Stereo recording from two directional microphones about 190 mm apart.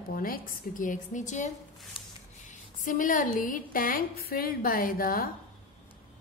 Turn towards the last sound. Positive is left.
turn(degrees=50)  # may be behind; listen again after turning